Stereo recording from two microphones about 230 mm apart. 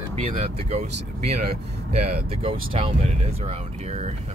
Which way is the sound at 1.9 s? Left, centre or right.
Right.